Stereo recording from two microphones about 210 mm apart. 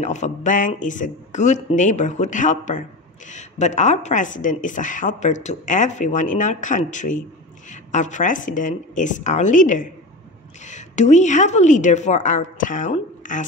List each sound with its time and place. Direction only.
0.0 s speech: 35° left (ahead or behind)